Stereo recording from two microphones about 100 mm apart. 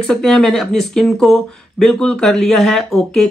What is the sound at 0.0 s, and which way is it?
Speech, 5° left (ahead or behind).